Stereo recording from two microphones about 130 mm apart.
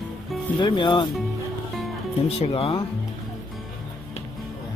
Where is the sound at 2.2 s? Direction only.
50° left (ahead or behind).